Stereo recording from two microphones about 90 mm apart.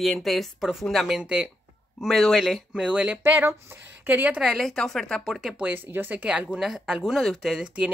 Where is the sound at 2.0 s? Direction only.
Centre (ahead or behind); by 4.4 s 20° right (ahead or behind).